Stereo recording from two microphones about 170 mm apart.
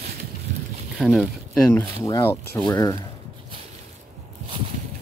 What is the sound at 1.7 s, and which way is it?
Speech, 15° left (ahead or behind).